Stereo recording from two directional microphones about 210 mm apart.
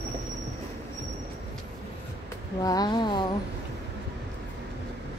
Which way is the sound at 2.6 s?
20° left (ahead or behind).